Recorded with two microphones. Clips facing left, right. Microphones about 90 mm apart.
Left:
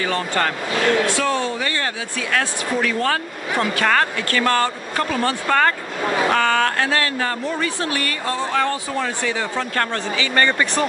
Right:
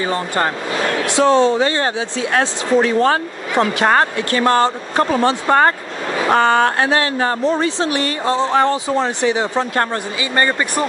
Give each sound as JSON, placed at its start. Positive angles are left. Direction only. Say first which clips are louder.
{"t": 0.0, "sound": "speech", "louder": "right 2 dB", "side_deg": -25}